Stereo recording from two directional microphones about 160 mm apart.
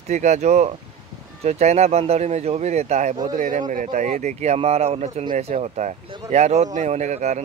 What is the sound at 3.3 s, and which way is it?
Speech, 55° right (ahead or behind).